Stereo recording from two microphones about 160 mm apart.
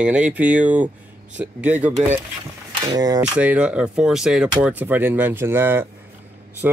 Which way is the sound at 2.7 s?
25° right (ahead or behind).